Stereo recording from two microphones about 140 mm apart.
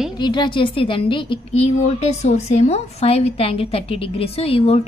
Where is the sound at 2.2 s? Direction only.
55° left (ahead or behind).